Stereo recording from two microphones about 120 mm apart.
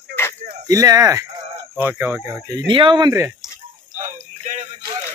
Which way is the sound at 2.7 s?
45° right (ahead or behind).